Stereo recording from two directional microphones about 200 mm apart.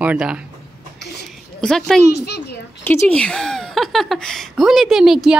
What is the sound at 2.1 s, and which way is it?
Speech, 55° left (ahead or behind).